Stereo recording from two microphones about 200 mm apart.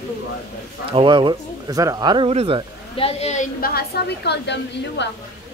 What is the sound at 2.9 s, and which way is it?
A woman's voice, 30° left (ahead or behind).